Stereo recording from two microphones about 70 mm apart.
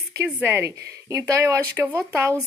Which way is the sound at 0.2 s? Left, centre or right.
Right.